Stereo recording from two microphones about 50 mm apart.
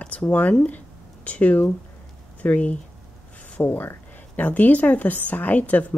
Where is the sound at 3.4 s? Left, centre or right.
Left.